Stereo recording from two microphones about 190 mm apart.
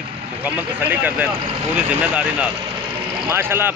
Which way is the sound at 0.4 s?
10° right (ahead or behind).